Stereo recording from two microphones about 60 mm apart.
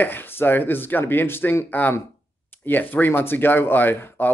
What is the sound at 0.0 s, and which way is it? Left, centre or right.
Speech, left.